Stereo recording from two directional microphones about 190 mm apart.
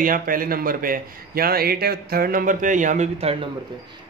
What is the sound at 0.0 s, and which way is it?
A man's voice, 45° right (ahead or behind).